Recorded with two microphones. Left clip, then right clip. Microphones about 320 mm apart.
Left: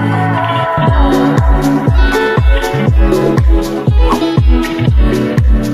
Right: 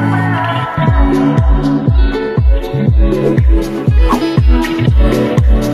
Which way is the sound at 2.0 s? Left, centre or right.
Left.